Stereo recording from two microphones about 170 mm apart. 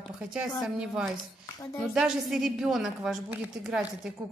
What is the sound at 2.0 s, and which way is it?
A woman's voice, 5° right (ahead or behind).